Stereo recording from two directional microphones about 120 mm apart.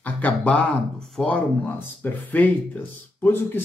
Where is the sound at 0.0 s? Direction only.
10° left (ahead or behind).